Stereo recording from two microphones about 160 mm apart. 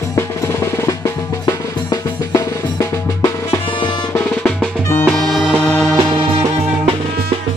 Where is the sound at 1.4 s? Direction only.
25° left (ahead or behind).